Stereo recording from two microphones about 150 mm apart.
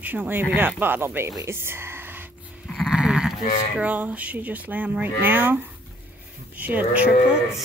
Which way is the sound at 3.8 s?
10° right (ahead or behind).